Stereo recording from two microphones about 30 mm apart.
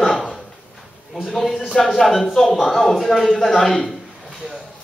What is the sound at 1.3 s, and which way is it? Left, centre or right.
Speech, centre.